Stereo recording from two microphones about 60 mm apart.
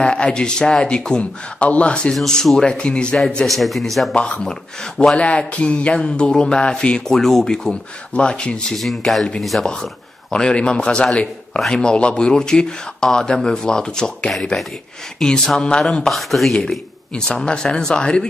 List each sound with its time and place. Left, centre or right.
0.0 s a man's voice: centre
2.1 s a man's voice: centre
3.4 s a man's voice: centre
5.1 s a man's voice: left
8.7 s speech: centre
10.3 s a man's voice: centre
16.1 s a man's voice: centre